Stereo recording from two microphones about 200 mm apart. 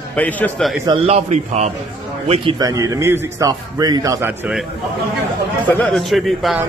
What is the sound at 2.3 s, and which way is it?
A man's voice, 20° right (ahead or behind).